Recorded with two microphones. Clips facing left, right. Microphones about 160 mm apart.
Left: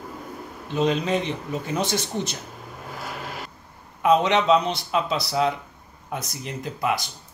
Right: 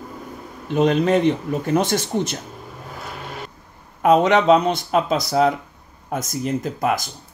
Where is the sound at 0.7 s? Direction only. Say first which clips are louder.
Right 6 dB; 55° right (ahead or behind).